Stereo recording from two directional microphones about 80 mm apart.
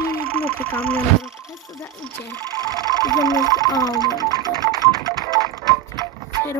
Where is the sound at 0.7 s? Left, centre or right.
Centre.